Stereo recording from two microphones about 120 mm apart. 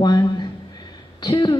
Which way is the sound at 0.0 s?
35° left (ahead or behind).